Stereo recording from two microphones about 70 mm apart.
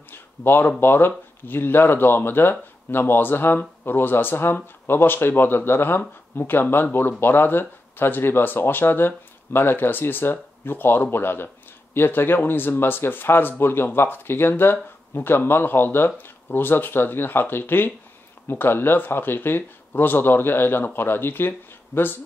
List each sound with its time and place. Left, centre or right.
0.1 s speech: left